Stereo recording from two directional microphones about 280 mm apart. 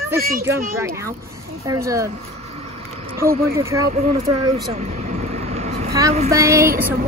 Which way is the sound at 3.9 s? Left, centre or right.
Right.